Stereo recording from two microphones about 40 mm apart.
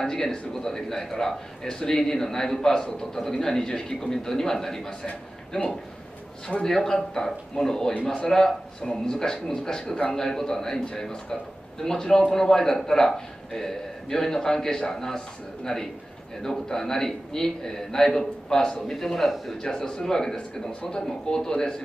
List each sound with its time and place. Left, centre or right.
0.0 s a man's voice: centre
19.6 s a man's voice: centre